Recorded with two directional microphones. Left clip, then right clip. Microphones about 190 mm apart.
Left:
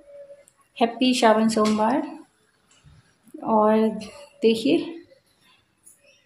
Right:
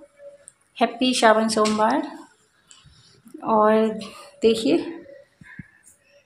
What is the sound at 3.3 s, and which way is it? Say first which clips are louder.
Speech: right 2 dB; 15° left (ahead or behind).